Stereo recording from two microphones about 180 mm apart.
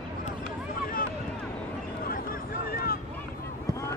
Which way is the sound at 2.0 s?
55° left (ahead or behind).